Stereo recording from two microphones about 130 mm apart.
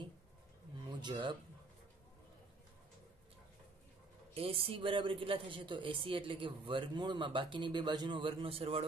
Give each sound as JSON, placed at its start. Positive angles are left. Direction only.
{"t": 1.0, "sound": "speech", "side_deg": -40}
{"t": 4.3, "sound": "speech", "side_deg": -45}